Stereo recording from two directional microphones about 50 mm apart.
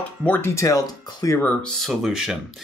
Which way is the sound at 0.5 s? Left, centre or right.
Left.